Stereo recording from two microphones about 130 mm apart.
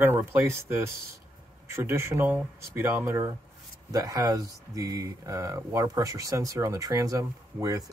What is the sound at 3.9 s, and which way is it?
Speech, 30° right (ahead or behind).